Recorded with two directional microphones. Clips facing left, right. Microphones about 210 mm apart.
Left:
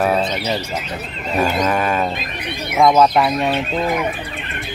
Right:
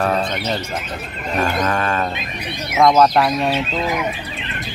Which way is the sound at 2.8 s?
Centre (ahead or behind).